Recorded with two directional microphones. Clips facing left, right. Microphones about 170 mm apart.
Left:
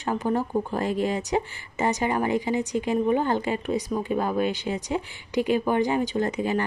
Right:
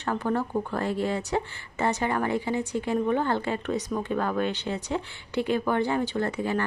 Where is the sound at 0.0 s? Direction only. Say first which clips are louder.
Left 2 dB; 15° left (ahead or behind).